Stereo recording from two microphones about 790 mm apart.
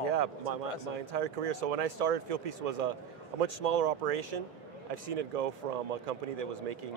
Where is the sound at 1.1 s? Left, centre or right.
Right.